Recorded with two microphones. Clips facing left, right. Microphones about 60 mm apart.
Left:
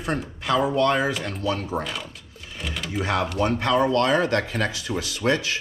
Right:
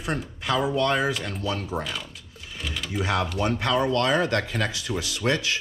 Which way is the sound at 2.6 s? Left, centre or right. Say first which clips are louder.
Left 1 dB; centre.